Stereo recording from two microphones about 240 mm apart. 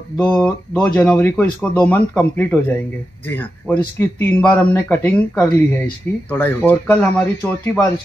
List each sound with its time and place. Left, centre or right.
0.2 s speech: centre
0.9 s speech: centre